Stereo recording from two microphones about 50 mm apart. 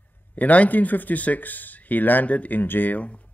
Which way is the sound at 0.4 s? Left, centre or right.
Left.